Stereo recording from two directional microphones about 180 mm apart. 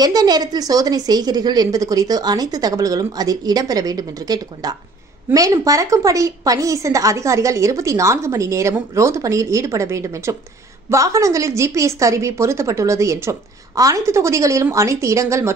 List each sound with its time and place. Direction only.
0.0 s a woman's voice: 20° right (ahead or behind)